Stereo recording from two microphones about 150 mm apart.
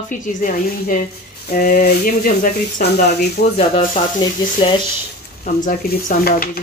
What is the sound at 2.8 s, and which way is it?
Speech, 70° left (ahead or behind).